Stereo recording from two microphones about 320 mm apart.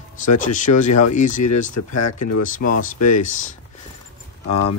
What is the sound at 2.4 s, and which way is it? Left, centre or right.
Speech, left.